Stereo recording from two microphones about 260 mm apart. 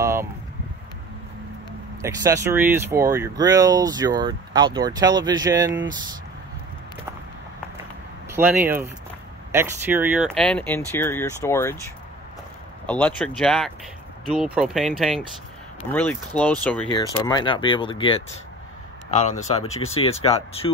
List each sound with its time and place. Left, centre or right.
0.0 s a sound: centre
2.0 s speech: centre
8.3 s speech: centre
12.8 s speech: centre
16.8 s speech: centre
19.2 s speech: left